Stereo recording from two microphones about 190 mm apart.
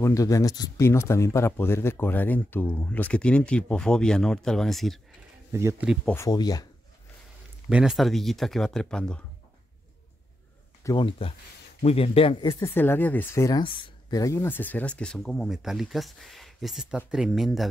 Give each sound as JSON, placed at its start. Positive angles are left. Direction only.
{"t": 0.0, "sound": "speech", "side_deg": 15}
{"t": 5.5, "sound": "speech", "side_deg": -15}
{"t": 6.1, "sound": "speech", "side_deg": 20}
{"t": 7.7, "sound": "speech", "side_deg": -5}
{"t": 10.8, "sound": "speech", "side_deg": 20}
{"t": 12.6, "sound": "speech", "side_deg": 10}